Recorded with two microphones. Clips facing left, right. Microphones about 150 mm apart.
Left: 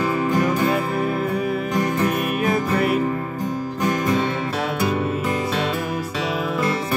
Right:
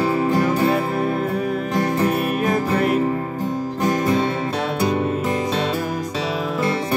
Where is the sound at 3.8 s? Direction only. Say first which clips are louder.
Right 2 dB; 30° right (ahead or behind).